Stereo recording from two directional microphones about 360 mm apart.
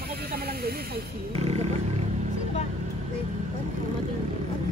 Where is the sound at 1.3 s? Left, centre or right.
Centre.